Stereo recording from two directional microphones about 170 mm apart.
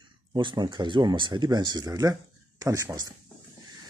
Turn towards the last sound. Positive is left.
turn(degrees=-25)  # may be behind; listen again after turning